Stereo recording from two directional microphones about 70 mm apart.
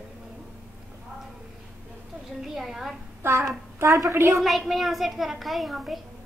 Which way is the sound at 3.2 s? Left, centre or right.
Right.